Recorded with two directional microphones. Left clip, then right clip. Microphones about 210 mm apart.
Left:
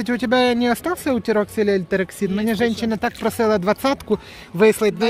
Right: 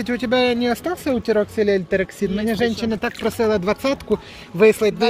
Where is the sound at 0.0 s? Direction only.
35° left (ahead or behind).